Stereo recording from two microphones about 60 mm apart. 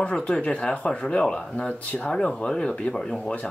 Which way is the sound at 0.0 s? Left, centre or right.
Centre.